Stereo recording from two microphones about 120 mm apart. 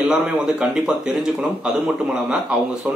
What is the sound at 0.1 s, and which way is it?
Speech, 5° right (ahead or behind).